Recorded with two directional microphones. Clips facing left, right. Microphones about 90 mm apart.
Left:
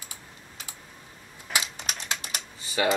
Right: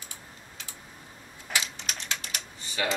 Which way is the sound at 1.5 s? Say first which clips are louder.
Left 1 dB; 10° left (ahead or behind).